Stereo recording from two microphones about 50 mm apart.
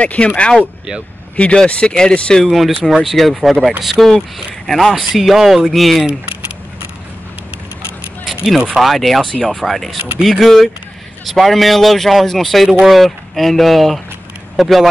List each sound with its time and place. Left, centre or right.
0.0 s speech: left
2.4 s speech: centre
8.7 s speech: centre